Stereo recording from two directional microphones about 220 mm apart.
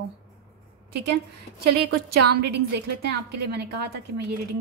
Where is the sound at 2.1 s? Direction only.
90° right.